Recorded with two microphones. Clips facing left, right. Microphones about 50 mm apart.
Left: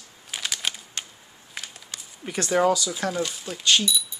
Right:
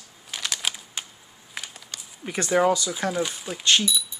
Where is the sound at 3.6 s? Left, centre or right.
Right.